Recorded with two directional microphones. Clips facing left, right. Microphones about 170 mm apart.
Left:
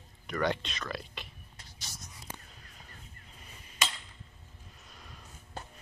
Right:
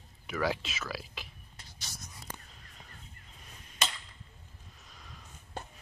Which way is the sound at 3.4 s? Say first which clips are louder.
Even; centre (ahead or behind).